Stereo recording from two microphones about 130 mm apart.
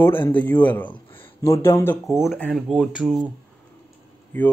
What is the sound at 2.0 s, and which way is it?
Speech, centre (ahead or behind).